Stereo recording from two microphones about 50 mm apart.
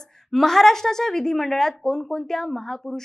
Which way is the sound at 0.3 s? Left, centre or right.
Centre.